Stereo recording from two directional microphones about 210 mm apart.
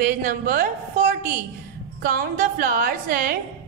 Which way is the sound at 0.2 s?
45° right (ahead or behind).